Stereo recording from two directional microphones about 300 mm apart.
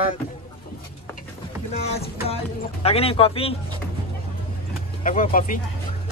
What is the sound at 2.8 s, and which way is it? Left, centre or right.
Speech, centre.